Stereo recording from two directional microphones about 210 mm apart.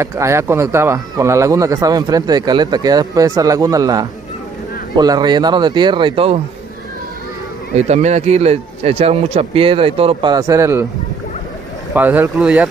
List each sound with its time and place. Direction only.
0.0 s speech: 15° right (ahead or behind)
7.7 s speech: 30° right (ahead or behind); by 10.9 s 15° right (ahead or behind)
11.9 s speech: 10° right (ahead or behind)